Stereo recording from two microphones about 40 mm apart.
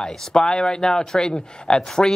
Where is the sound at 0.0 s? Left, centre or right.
Centre.